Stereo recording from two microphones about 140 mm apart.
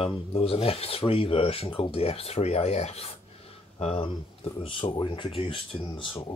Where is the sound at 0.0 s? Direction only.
40° left (ahead or behind).